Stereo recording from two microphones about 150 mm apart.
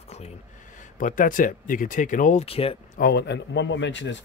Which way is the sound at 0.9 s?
60° left (ahead or behind).